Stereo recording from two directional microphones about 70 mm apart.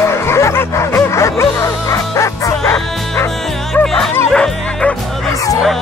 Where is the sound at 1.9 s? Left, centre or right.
Left.